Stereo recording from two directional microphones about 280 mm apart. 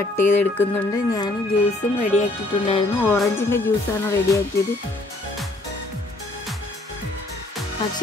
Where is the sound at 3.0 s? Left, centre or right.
Centre.